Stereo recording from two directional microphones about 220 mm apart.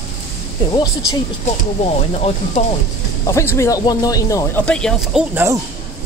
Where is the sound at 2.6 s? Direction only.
30° left (ahead or behind).